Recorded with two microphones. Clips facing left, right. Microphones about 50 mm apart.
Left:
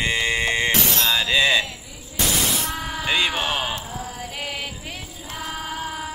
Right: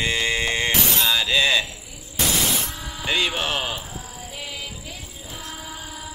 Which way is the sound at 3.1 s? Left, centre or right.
Left.